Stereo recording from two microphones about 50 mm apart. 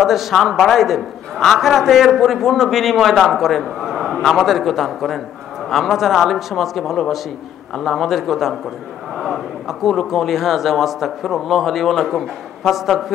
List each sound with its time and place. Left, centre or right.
0.0 s a man's voice: centre
7.8 s a man's voice: centre